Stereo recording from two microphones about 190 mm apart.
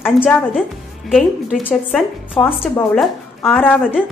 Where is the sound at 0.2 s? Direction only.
5° left (ahead or behind).